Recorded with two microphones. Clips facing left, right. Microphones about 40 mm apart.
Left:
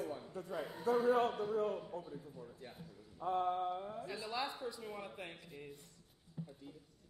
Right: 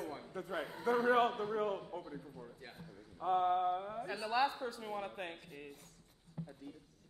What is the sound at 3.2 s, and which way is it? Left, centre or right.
Speech, right.